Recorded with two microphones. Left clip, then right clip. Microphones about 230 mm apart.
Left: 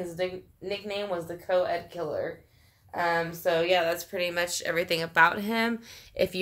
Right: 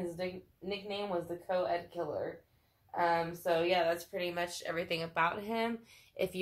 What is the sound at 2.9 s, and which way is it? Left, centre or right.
Speech, left.